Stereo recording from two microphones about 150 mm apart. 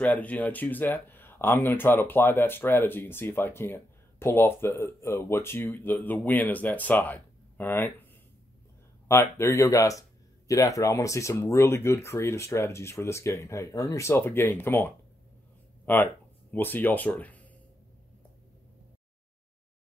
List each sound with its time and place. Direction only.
0.0 s speech: 10° left (ahead or behind)
9.0 s speech: 15° left (ahead or behind)